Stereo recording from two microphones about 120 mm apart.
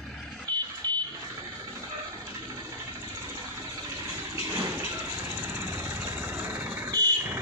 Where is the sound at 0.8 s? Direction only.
35° right (ahead or behind).